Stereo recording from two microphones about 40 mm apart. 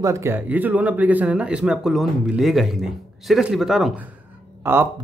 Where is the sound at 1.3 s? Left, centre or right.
Right.